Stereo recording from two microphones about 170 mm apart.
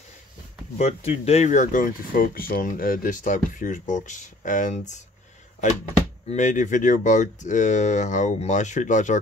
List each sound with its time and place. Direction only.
0.7 s speech: 40° left (ahead or behind)
6.2 s speech: 45° left (ahead or behind)